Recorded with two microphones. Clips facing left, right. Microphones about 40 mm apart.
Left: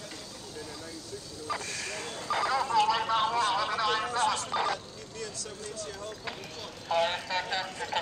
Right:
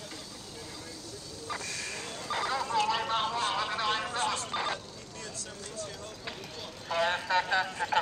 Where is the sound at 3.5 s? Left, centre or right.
Right.